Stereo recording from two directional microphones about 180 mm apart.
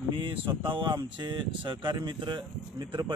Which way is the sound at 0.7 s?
25° right (ahead or behind).